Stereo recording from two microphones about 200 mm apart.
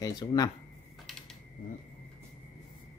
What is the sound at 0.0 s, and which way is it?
Speech, 20° left (ahead or behind).